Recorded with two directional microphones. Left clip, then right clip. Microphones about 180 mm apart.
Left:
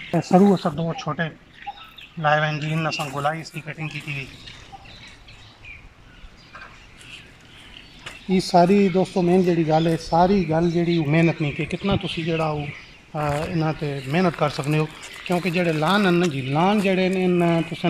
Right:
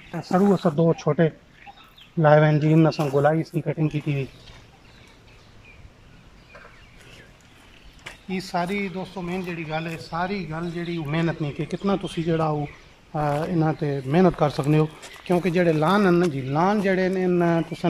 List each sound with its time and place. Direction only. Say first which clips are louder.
0.4 s speech: even; 10° right (ahead or behind)
0.7 s speech: right 6 dB; 35° right (ahead or behind)
2.1 s speech: right 3 dB; 45° right (ahead or behind)
8.3 s speech: left 10 dB; 25° left (ahead or behind)
11.0 s speech: left 3 dB; 20° left (ahead or behind)
11.4 s a man's voice: left 4 dB; 5° left (ahead or behind)
11.7 s speech: right 3 dB; 5° right (ahead or behind)